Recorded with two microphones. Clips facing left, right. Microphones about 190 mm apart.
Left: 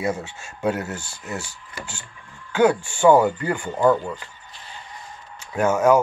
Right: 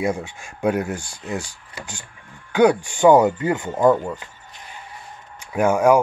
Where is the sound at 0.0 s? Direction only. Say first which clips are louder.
Right 2 dB; 15° right (ahead or behind).